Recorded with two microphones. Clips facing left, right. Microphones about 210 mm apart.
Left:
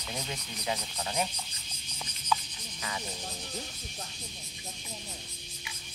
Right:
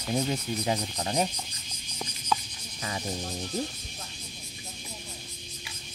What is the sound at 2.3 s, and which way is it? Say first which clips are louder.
Cricket: right 1 dB; 45° right (ahead or behind).